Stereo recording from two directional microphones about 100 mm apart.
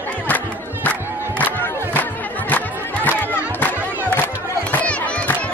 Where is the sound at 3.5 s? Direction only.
15° left (ahead or behind).